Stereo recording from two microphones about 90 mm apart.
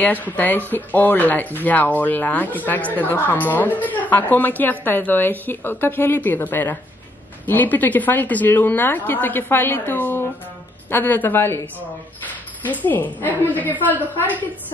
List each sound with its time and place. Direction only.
0.0 s speech: 20° left (ahead or behind)
12.8 s speech: 20° left (ahead or behind)